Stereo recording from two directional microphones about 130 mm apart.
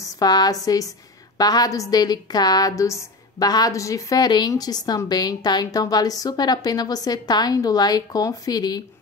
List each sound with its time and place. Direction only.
0.0 s a woman's voice: 30° left (ahead or behind)